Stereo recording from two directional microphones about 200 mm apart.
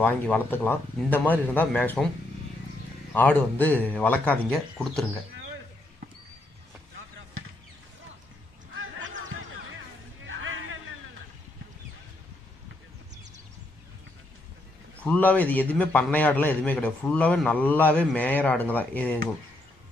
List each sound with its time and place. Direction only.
0.0 s a man's voice: 10° left (ahead or behind)
3.1 s a man's voice: 10° left (ahead or behind)
10.2 s music: 75° right (ahead or behind)
15.0 s a man's voice: 5° left (ahead or behind)